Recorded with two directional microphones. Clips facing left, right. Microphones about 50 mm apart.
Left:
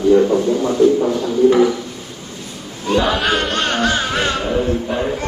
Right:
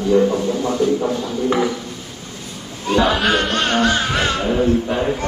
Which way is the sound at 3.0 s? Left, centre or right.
Centre.